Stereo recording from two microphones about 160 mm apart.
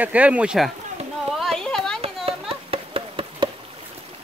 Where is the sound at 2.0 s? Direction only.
35° right (ahead or behind).